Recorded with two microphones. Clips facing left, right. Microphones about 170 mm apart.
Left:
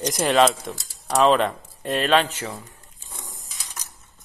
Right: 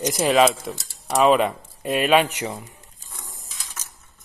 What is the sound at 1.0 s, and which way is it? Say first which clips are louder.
Cutlery: even; centre (ahead or behind).